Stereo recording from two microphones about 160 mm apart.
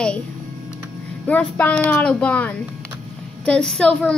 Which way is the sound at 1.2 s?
10° left (ahead or behind).